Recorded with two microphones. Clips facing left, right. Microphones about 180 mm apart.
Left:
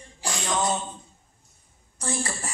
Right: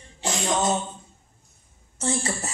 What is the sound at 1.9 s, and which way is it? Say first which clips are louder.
Speech: right 3 dB; 25° right (ahead or behind).